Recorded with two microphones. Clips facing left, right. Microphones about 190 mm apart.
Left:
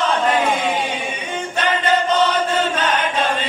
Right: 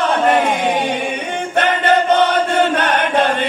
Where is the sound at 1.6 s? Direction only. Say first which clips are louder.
Right 4 dB; 60° right (ahead or behind).